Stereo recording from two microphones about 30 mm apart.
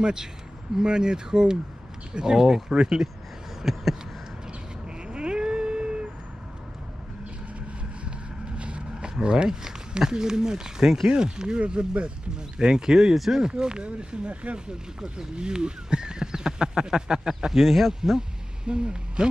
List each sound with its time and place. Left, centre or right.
0.0 s speech: right
3.7 s speech: centre
5.0 s vehicle: right
8.5 s vehicle: right
9.2 s speech: right
13.1 s speech: centre
13.4 s speech: right
14.7 s speech: right
17.3 s speech: centre
17.6 s speech: centre
18.1 s speech: right